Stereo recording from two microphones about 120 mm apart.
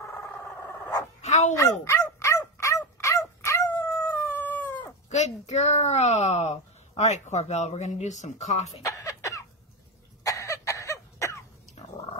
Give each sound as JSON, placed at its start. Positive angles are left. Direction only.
{"t": 0.0, "sound": "a sound", "side_deg": 25}
{"t": 1.2, "sound": "dog", "side_deg": 70}
{"t": 1.6, "sound": "dog", "side_deg": 25}
{"t": 3.8, "sound": "howl", "side_deg": 15}
{"t": 5.1, "sound": "a sound", "side_deg": 70}
{"t": 8.8, "sound": "cough", "side_deg": 30}